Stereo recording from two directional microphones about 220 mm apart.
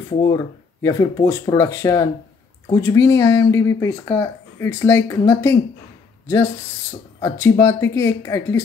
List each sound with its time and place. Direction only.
0.1 s speech: 20° left (ahead or behind)